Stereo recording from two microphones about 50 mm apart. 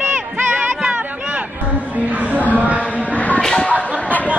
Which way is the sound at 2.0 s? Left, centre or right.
Right.